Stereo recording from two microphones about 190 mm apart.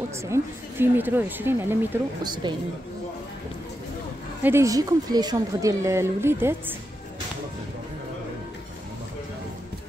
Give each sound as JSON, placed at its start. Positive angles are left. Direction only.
{"t": 0.3, "sound": "speech", "side_deg": -10}
{"t": 2.2, "sound": "speech", "side_deg": -25}
{"t": 4.4, "sound": "speech", "side_deg": -10}